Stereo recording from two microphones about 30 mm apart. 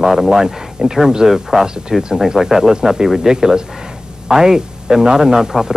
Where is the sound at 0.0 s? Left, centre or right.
Centre.